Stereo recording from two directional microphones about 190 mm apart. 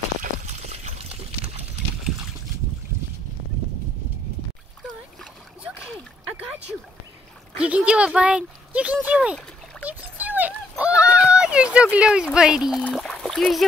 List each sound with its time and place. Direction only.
0.2 s pour: 35° right (ahead or behind)
4.8 s splash: 5° right (ahead or behind)
6.3 s a sound: 10° right (ahead or behind)
7.5 s speech: 5° right (ahead or behind)
9.8 s a sound: 10° right (ahead or behind)
12.9 s splash: centre (ahead or behind)